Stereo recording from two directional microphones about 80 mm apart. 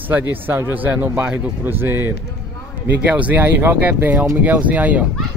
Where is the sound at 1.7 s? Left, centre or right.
Right.